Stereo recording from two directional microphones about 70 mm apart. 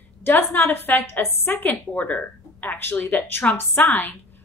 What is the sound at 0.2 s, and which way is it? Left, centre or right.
A woman's voice, left.